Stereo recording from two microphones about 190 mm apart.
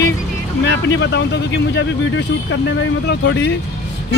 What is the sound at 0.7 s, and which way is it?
Speech, 70° left (ahead or behind).